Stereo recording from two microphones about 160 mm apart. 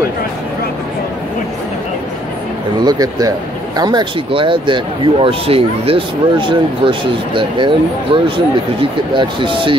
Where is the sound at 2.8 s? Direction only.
25° right (ahead or behind).